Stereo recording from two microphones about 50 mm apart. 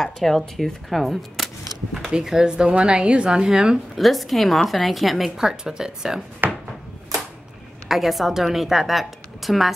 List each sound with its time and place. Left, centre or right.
0.0 s speech: centre
3.9 s speech: centre
5.4 s speech: centre
7.9 s a woman's voice: centre